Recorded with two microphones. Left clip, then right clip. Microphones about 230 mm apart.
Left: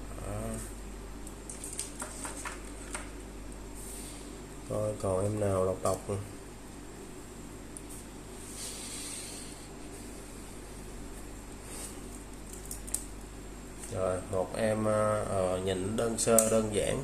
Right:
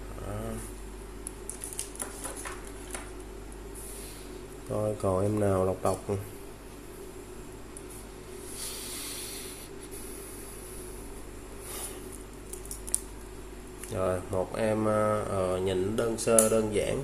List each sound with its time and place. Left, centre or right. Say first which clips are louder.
4.7 s speech: right 3 dB; centre
13.9 s speech: right 2 dB; centre